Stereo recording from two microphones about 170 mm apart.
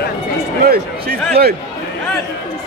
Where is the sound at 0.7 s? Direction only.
65° right (ahead or behind).